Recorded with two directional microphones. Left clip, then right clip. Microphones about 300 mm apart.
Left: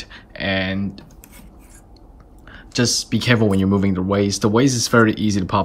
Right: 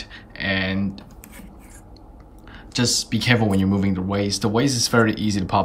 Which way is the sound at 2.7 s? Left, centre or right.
Centre.